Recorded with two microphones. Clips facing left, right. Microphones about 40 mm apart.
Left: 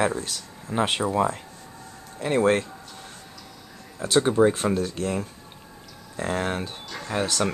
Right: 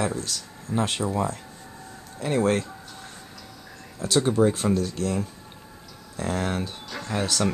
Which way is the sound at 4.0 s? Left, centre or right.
Centre.